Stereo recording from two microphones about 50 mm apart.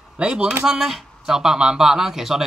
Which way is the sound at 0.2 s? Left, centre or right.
Centre.